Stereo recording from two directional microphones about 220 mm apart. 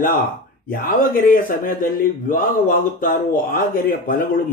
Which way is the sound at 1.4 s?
40° left (ahead or behind).